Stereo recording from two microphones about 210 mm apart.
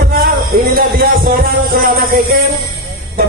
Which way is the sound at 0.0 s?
45° right (ahead or behind).